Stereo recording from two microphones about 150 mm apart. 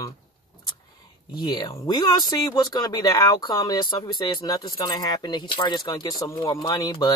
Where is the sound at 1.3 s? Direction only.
25° left (ahead or behind).